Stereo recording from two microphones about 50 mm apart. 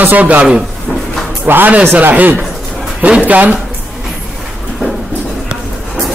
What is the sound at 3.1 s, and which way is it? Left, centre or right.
Speech, right.